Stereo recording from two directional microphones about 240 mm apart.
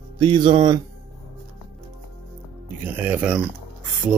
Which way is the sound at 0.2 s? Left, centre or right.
Centre.